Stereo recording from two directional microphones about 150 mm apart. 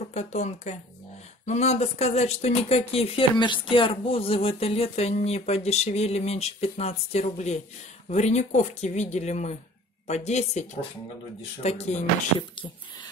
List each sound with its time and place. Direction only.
0.1 s speech: 50° left (ahead or behind)